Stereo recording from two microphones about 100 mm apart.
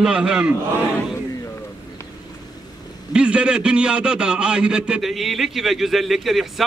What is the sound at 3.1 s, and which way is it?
A man's voice, 10° right (ahead or behind).